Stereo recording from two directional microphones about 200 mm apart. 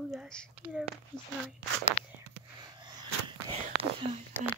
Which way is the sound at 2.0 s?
35° left (ahead or behind).